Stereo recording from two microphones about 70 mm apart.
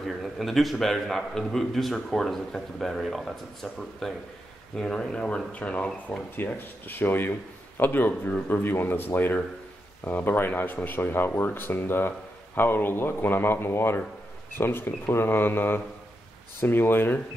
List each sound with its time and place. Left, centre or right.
0.0 s a man's voice: centre; by 17.2 s left